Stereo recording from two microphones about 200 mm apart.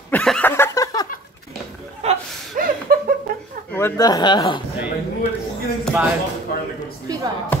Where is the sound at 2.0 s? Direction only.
40° right (ahead or behind).